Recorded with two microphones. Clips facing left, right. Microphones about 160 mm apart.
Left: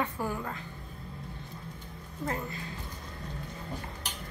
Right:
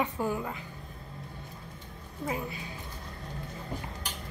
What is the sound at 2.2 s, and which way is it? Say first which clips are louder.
Speech: right 1 dB; 10° right (ahead or behind).